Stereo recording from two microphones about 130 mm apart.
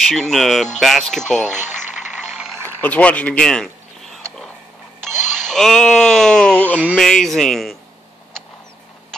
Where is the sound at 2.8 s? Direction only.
10° left (ahead or behind).